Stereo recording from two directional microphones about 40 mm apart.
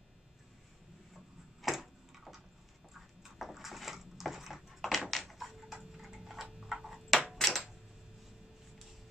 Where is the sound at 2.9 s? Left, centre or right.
Centre.